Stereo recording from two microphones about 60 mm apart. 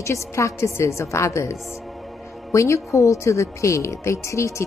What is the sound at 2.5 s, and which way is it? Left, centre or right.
Speech, left.